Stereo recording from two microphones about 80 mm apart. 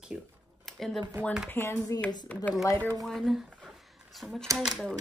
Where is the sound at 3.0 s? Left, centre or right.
Centre.